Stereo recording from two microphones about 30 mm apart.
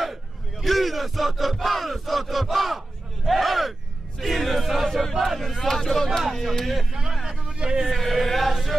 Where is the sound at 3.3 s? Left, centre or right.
Centre.